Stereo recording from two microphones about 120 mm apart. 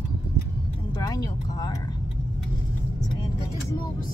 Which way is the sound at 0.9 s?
30° left (ahead or behind).